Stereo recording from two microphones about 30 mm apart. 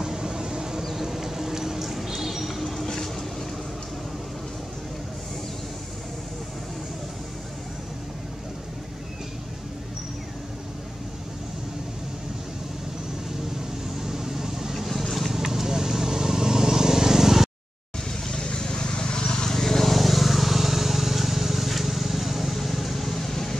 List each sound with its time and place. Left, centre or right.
0.0 s vehicle: right
1.1 s a sound: centre
13.9 s vehicle: centre
18.2 s vehicle: left
19.5 s vehicle: centre